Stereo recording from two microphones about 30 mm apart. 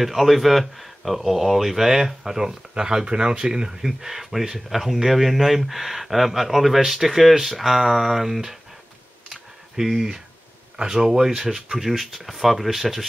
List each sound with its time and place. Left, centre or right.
0.0 s speech: centre; by 3.8 s right
3.8 s speech: centre
9.3 s computer keyboard: centre
10.9 s speech: centre
12.0 s speech: centre